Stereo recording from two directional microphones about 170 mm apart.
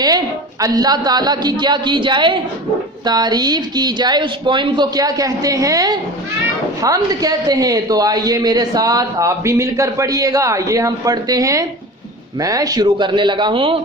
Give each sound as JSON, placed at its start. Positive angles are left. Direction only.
{"t": 0.0, "sound": "a woman's voice", "side_deg": -20}